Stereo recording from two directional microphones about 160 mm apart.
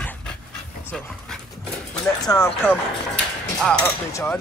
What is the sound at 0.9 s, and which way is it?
Dog, 5° left (ahead or behind).